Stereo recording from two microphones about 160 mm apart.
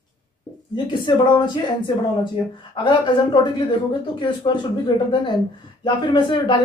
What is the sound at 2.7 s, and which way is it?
Speech, 30° left (ahead or behind).